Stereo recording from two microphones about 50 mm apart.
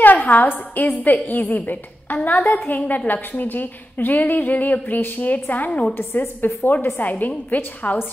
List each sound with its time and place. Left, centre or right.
0.0 s a woman's voice: left
5.7 s a woman's voice: left
5.9 s a woman's voice: left